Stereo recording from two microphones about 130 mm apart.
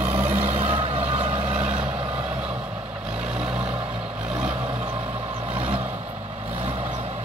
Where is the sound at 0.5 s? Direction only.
55° right (ahead or behind).